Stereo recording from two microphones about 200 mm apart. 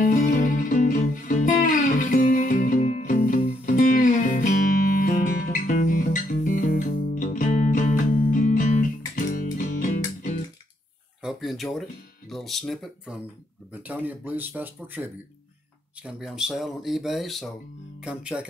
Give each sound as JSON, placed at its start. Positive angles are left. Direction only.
{"t": 0.0, "sound": "music", "side_deg": 40}
{"t": 11.2, "sound": "a sound", "side_deg": 0}
{"t": 12.3, "sound": "speech", "side_deg": 0}